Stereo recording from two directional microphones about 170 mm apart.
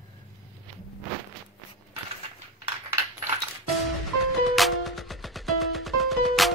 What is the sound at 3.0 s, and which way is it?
Coin, 15° right (ahead or behind).